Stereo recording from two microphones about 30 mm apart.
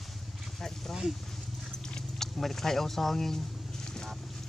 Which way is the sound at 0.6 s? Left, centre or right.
Centre.